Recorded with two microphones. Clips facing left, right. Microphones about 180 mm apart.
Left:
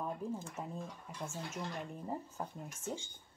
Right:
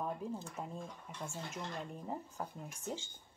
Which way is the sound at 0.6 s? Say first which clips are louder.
Left 1 dB; 5° left (ahead or behind).